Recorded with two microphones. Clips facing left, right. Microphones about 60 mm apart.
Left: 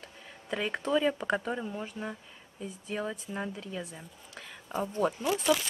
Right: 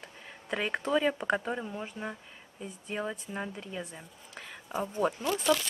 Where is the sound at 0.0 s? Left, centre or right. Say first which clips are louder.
Right 1 dB; centre.